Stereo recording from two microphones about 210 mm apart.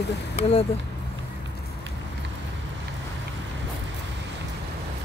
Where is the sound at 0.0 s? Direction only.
50° left (ahead or behind).